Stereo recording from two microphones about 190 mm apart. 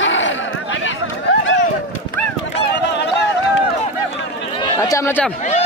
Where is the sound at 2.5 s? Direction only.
65° left (ahead or behind).